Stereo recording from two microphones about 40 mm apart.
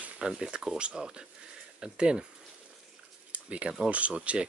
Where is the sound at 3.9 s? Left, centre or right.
Right.